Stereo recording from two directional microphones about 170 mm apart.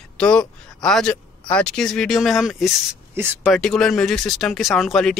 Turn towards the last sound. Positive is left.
turn(degrees=0)  # may be behind; listen again after turning